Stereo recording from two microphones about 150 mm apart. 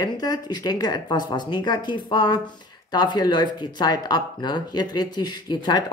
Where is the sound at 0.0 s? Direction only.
30° left (ahead or behind).